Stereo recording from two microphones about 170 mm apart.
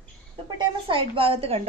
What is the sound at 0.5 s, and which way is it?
A woman's voice, 30° right (ahead or behind).